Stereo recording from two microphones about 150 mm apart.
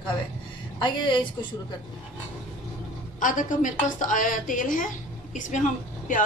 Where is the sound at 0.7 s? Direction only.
30° left (ahead or behind).